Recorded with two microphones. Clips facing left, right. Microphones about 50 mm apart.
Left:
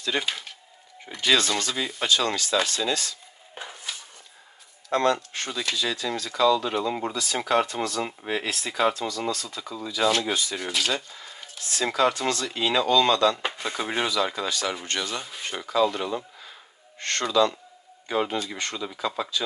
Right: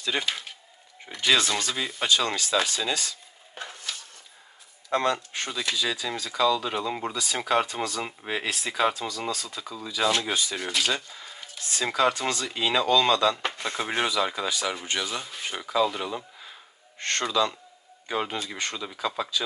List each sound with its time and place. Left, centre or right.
0.0 s speech: centre
3.5 s a sound: centre
4.8 s speech: centre
17.0 s speech: right
17.3 s speech: centre